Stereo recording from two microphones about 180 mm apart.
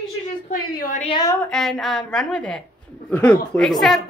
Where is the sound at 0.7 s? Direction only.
50° left (ahead or behind).